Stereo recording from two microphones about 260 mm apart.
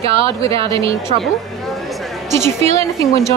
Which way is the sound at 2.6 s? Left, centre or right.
Right.